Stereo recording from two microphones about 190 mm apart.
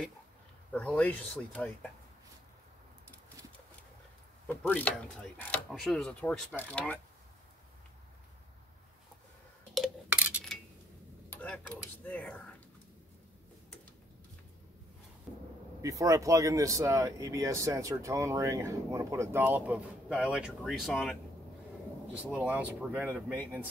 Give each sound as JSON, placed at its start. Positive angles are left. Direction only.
{"t": 0.7, "sound": "speech", "side_deg": 5}
{"t": 4.5, "sound": "speech", "side_deg": 10}
{"t": 9.8, "sound": "coin", "side_deg": -5}
{"t": 11.2, "sound": "a sound", "side_deg": 5}
{"t": 12.0, "sound": "speech", "side_deg": 10}
{"t": 15.8, "sound": "speech", "side_deg": -15}